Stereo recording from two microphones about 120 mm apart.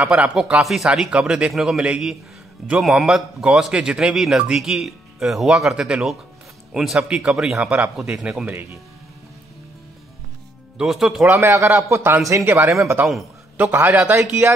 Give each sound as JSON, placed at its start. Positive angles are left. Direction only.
{"t": 0.0, "sound": "a man's voice", "side_deg": -10}
{"t": 10.8, "sound": "a man's voice", "side_deg": 0}
{"t": 11.2, "sound": "a man's voice", "side_deg": -25}